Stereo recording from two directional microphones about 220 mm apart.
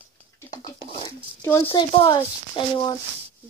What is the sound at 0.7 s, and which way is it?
Speech, 25° left (ahead or behind).